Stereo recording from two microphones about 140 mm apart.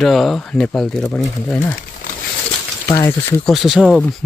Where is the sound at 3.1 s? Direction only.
15° left (ahead or behind).